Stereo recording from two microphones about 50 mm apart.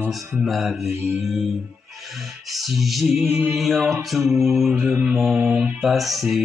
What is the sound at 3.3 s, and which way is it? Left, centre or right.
Mantra, right.